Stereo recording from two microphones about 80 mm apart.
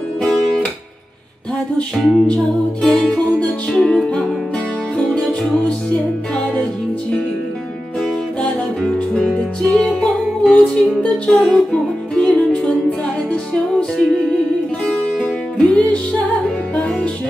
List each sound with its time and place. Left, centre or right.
2.0 s music: centre
8.4 s music: centre